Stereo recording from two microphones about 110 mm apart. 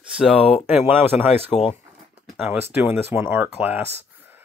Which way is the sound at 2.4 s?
15° right (ahead or behind).